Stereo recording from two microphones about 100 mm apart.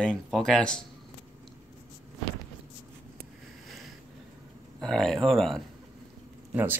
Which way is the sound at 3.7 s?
Centre (ahead or behind).